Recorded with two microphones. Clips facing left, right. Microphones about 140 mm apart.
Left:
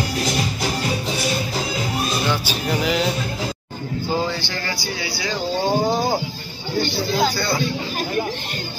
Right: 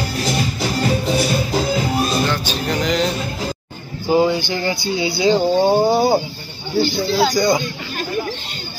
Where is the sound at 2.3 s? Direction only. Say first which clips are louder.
Right 1 dB; 10° left (ahead or behind).